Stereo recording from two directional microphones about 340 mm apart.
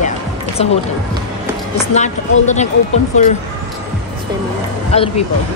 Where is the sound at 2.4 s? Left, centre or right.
Centre.